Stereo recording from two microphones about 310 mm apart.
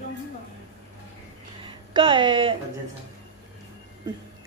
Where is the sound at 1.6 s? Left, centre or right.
Centre.